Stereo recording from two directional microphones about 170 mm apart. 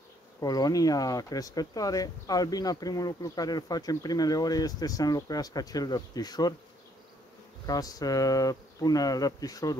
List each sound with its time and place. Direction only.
0.4 s speech: 20° left (ahead or behind)
7.6 s speech: 20° left (ahead or behind)